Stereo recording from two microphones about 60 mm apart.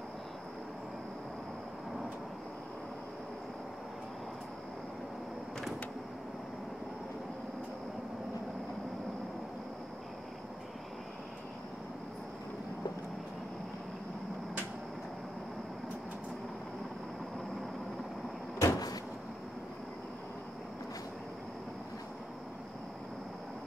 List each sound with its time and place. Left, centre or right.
18.6 s vehicle: left